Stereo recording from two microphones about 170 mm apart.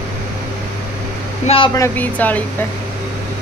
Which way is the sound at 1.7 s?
15° left (ahead or behind).